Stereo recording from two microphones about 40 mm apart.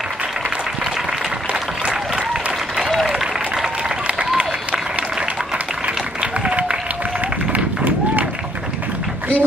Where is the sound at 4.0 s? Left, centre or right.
Right.